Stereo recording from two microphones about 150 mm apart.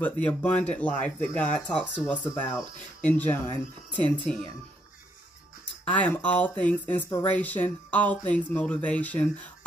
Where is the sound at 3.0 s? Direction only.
10° left (ahead or behind).